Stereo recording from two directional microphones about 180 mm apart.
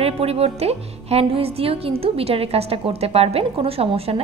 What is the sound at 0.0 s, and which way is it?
A woman's voice, 35° right (ahead or behind).